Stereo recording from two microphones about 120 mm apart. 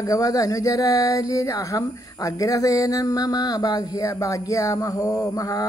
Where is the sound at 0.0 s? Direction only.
30° left (ahead or behind).